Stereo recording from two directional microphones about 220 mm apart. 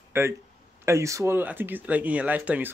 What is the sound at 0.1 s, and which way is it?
Speech, 10° right (ahead or behind).